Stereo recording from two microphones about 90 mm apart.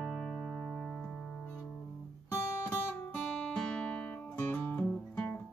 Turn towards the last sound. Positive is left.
turn(degrees=15)  # may be behind; listen again after turning